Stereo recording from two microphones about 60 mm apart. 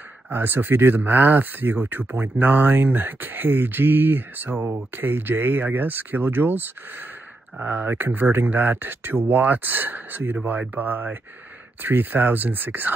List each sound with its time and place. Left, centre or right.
0.3 s speech: right